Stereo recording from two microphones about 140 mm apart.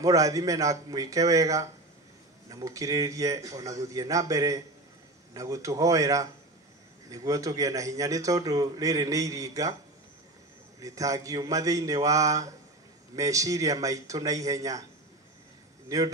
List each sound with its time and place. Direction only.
0.0 s a man's voice: 25° right (ahead or behind)
10.8 s a man's voice: 25° right (ahead or behind)